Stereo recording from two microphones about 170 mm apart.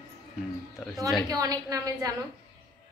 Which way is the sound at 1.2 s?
20° right (ahead or behind).